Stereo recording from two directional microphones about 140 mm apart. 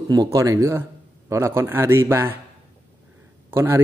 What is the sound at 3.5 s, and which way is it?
Speech, 20° right (ahead or behind).